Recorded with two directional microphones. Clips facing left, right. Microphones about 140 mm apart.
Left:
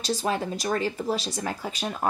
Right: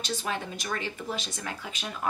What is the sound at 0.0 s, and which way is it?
Speech, 40° left (ahead or behind).